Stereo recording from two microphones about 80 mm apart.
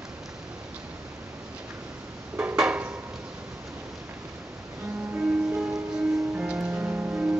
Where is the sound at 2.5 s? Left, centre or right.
Centre.